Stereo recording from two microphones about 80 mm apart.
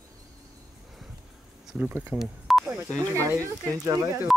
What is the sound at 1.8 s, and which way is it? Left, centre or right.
Speech, right.